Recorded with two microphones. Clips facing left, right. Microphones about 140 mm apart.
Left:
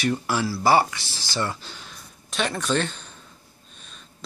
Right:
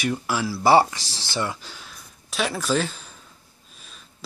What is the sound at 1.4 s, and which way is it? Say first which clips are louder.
Speech: even; 10° right (ahead or behind).